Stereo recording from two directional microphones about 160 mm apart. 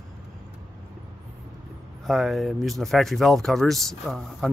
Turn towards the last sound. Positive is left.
turn(degrees=0)  # may be behind; listen again after turning